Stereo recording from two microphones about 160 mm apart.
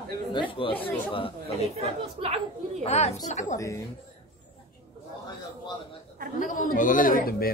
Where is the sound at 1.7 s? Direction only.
40° right (ahead or behind).